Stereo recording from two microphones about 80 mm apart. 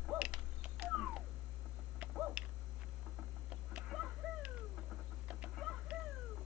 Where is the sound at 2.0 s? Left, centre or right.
Centre.